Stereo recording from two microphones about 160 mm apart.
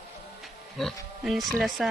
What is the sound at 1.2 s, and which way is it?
Speech, centre (ahead or behind).